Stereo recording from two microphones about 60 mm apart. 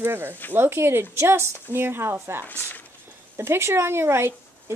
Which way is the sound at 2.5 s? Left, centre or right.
Left.